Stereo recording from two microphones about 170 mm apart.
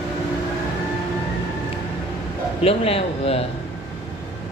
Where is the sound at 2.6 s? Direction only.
35° left (ahead or behind).